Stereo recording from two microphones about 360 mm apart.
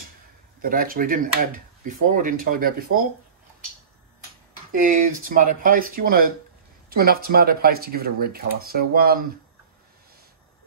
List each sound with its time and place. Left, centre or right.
0.6 s speech: right
4.7 s speech: right